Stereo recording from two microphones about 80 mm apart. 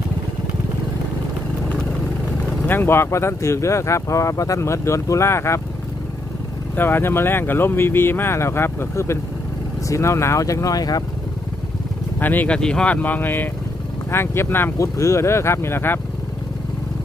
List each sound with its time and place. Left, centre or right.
2.6 s speech: left
6.7 s speech: left
12.2 s speech: left
12.5 s speech: centre; by 16.0 s left